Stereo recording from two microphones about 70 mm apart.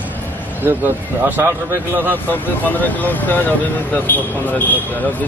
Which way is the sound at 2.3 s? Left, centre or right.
Left.